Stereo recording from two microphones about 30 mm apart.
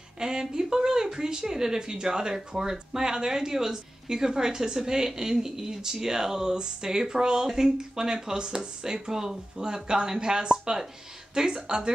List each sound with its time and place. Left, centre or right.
0.2 s speech: right